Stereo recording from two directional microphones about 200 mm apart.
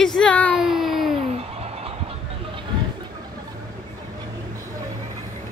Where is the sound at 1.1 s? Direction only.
30° right (ahead or behind).